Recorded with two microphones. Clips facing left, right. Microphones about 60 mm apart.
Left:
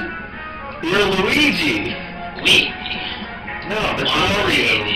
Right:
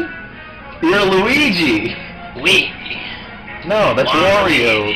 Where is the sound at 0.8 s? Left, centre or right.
Right.